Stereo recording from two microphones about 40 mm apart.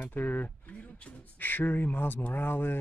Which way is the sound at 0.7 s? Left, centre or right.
Left.